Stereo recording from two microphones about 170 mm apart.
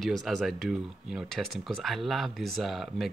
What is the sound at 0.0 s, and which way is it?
Speech, centre (ahead or behind).